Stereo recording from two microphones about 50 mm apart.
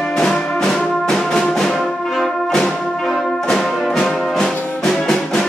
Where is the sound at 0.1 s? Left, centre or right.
Centre.